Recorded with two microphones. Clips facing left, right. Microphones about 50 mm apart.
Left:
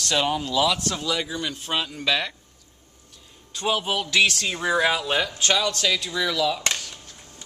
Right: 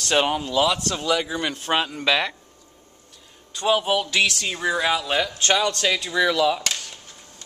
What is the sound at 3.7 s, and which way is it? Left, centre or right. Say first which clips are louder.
Speech: right 5 dB; centre.